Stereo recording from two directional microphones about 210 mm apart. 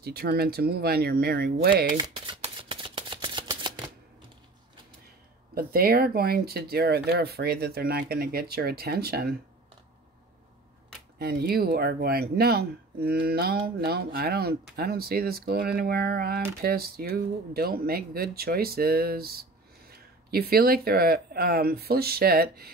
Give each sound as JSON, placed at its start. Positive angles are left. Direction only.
{"t": 0.0, "sound": "speech", "side_deg": -50}
{"t": 2.0, "sound": "shuffling cards", "side_deg": -20}
{"t": 5.5, "sound": "speech", "side_deg": -45}
{"t": 11.1, "sound": "speech", "side_deg": -50}